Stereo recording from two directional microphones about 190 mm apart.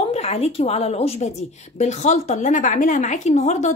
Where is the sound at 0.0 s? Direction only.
35° left (ahead or behind).